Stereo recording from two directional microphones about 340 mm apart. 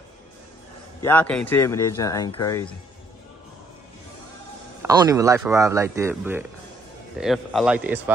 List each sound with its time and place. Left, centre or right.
1.0 s speech: centre
4.8 s a man's voice: centre